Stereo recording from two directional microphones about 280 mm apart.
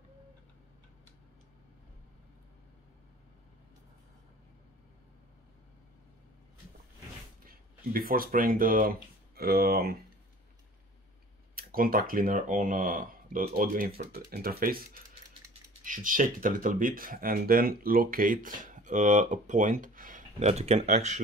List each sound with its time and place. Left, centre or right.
7.4 s speech: right
11.5 s speech: right
15.8 s speech: right